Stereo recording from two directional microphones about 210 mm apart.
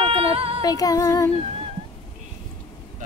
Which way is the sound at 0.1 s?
25° right (ahead or behind).